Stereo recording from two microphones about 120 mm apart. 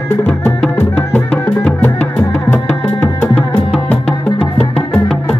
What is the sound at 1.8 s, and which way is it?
Music, 15° left (ahead or behind).